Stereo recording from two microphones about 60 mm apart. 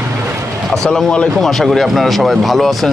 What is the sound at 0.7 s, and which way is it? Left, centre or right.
Speech, centre.